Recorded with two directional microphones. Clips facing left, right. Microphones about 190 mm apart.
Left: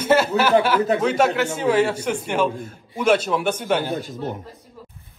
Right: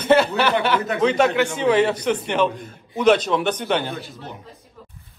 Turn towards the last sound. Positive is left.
turn(degrees=50)  # may be behind; listen again after turning